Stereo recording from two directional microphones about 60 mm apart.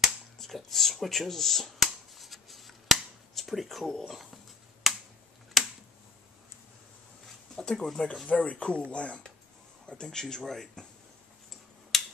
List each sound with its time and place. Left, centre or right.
0.4 s finger snapping: centre
4.1 s speech: centre
5.5 s a sound: centre
7.5 s speech: centre
8.3 s speech: left
11.9 s a sound: centre